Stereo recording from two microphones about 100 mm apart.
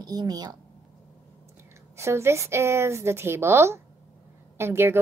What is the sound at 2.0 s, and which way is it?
A woman's voice, 25° right (ahead or behind).